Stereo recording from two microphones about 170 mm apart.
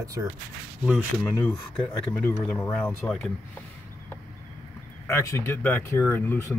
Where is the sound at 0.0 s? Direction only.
20° right (ahead or behind).